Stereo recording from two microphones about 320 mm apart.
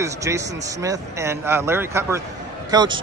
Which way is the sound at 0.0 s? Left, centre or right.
Centre.